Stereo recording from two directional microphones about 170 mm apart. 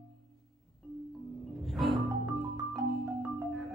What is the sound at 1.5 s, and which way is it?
Music, centre (ahead or behind).